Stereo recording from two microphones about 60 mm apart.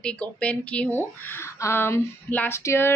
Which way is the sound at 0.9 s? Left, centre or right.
Left.